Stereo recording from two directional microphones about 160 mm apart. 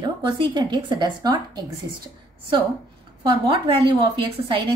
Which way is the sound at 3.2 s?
30° right (ahead or behind).